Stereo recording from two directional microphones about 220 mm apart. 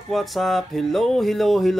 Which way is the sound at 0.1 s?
Centre (ahead or behind).